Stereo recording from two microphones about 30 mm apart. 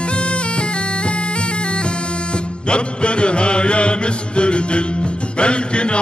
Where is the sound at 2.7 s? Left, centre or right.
Left.